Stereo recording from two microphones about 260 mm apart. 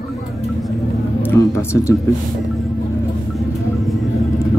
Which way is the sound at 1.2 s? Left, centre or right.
Centre.